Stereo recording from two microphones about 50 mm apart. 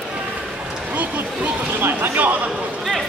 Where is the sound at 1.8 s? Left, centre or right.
Right.